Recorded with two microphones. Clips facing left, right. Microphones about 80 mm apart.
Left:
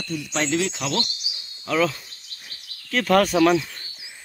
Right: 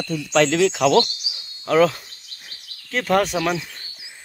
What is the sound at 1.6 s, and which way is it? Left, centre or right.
Speech, right.